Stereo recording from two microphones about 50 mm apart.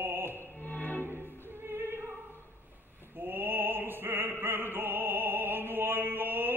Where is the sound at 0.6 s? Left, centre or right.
Left.